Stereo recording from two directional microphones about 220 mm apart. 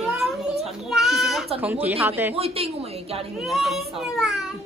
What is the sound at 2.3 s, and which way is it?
Speech, 25° right (ahead or behind).